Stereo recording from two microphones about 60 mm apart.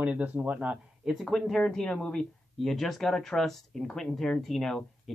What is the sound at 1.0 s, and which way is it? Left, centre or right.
Speech, centre.